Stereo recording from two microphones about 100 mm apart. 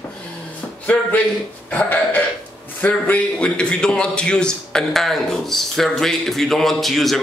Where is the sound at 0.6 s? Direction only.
15° left (ahead or behind).